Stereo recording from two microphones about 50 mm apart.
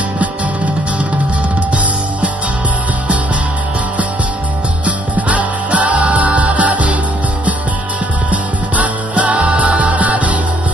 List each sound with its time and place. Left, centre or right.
4.8 s music: right
8.3 s music: right